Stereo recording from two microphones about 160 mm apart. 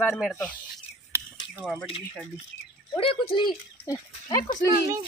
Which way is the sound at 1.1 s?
15° right (ahead or behind).